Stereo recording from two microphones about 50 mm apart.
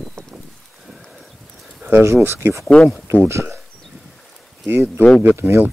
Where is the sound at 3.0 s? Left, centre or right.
Right.